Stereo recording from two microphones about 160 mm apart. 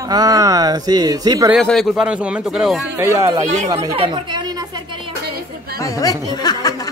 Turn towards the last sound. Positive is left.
turn(degrees=25)  # may be behind; listen again after turning